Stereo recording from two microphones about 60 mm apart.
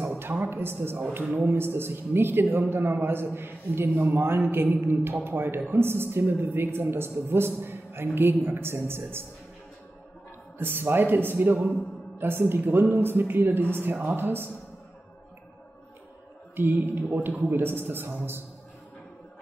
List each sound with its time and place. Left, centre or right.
0.2 s a woman's voice: right
10.6 s a woman's voice: right
16.5 s a woman's voice: right